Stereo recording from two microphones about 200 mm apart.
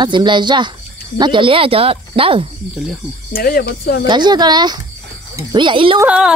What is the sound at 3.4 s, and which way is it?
Speech, 50° left (ahead or behind).